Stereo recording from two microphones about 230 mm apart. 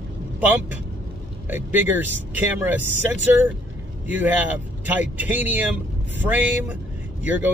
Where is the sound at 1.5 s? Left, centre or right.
Centre.